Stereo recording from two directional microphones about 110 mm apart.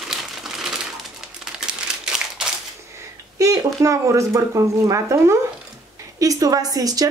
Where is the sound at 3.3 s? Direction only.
30° right (ahead or behind).